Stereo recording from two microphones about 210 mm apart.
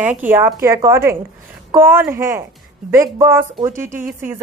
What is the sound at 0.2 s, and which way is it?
A woman's voice, 10° right (ahead or behind).